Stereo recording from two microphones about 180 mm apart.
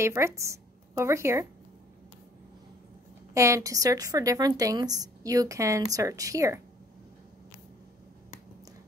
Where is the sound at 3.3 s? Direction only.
15° right (ahead or behind).